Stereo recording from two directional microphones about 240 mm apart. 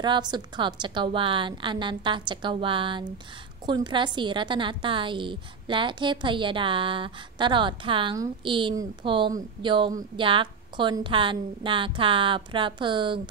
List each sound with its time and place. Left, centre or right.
0.0 s a woman's voice: centre